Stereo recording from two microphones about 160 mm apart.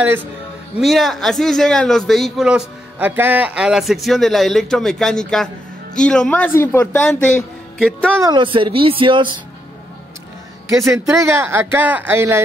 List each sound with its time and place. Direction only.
0.7 s a man's voice: centre (ahead or behind)
8.2 s speech: 30° right (ahead or behind)
10.9 s speech: 20° right (ahead or behind)